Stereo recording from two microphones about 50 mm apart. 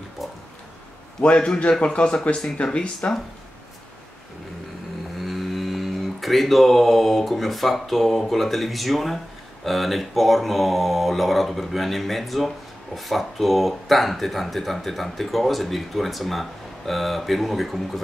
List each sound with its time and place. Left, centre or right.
1.2 s a man's voice: centre
5.2 s livestock: centre
9.7 s speech: centre